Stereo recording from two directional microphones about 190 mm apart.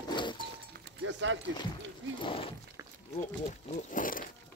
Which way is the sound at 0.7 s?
70° right (ahead or behind).